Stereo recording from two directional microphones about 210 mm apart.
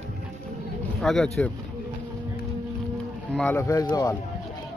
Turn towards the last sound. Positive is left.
turn(degrees=15)  # may be behind; listen again after turning